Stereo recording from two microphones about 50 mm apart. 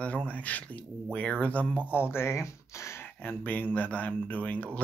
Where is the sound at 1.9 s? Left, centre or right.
Left.